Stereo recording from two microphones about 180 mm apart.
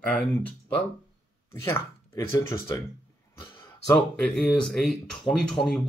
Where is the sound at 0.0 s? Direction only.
5° left (ahead or behind).